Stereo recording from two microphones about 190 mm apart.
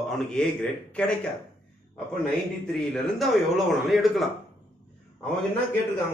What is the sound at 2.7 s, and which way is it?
Speech, centre (ahead or behind).